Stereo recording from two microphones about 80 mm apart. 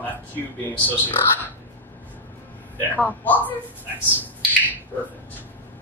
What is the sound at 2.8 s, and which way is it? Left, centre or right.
Speech, left.